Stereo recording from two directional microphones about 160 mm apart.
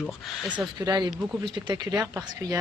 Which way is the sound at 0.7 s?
25° right (ahead or behind).